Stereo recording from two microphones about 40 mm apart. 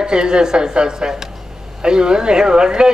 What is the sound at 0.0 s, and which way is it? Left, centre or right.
A woman's voice, centre.